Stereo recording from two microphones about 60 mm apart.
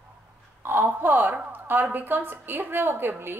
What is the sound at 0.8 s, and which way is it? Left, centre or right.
A woman's voice, right.